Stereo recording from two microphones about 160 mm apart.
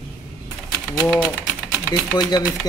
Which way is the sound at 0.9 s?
5° right (ahead or behind).